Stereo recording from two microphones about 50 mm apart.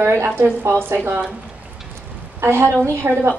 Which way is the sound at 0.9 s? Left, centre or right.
Right.